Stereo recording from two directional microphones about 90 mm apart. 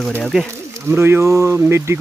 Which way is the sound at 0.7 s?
25° right (ahead or behind).